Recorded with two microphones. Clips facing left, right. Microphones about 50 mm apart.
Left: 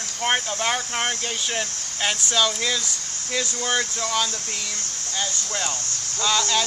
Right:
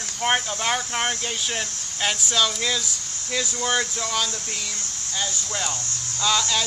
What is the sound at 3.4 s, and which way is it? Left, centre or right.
Speech, centre.